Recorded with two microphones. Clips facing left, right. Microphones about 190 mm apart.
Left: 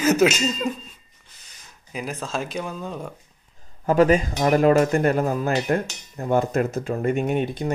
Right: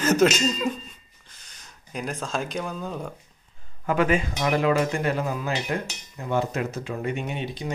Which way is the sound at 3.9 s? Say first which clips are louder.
Left 5 dB; 40° left (ahead or behind).